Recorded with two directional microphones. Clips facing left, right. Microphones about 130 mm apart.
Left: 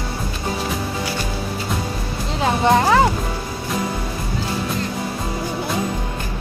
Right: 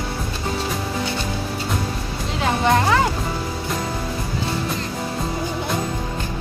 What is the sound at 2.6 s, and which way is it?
Speech, 25° left (ahead or behind).